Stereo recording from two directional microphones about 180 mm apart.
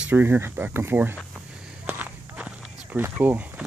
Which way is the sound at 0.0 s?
10° right (ahead or behind).